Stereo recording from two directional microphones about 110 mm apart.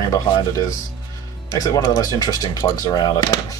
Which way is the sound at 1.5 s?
35° left (ahead or behind).